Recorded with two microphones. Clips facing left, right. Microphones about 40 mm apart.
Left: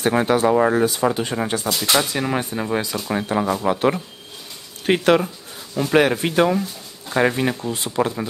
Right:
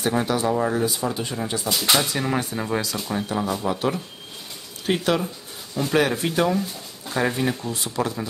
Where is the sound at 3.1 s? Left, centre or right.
Left.